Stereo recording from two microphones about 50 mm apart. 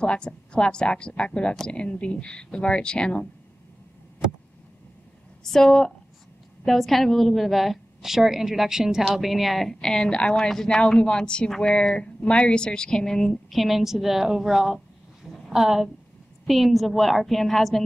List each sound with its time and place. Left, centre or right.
0.0 s speech: centre
5.4 s a woman's voice: centre
10.3 s a woman's voice: centre
13.5 s a woman's voice: centre